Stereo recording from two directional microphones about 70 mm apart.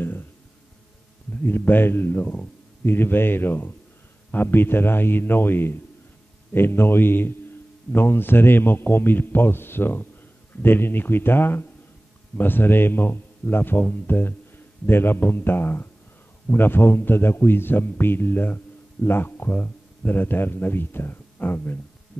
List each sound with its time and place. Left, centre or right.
1.3 s a man's voice: left